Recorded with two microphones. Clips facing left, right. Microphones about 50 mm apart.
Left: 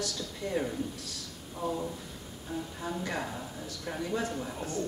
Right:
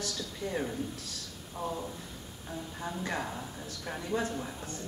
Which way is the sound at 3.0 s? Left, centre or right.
Centre.